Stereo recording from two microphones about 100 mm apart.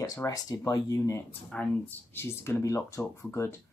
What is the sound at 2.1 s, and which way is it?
Speech, 25° left (ahead or behind).